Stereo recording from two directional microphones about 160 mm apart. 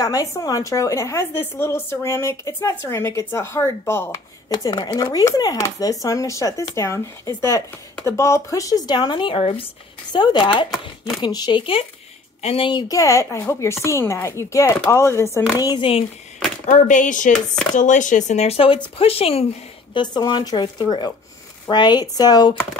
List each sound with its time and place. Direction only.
0.0 s a woman's voice: 20° left (ahead or behind)
4.6 s speech: 25° left (ahead or behind)
15.6 s speech: 30° left (ahead or behind)
16.6 s speech: 50° left (ahead or behind); by 22.6 s 25° left (ahead or behind)